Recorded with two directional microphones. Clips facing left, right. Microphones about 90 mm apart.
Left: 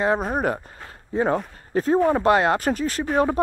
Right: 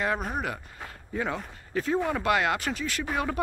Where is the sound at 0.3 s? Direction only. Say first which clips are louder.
Left 8 dB; 40° left (ahead or behind).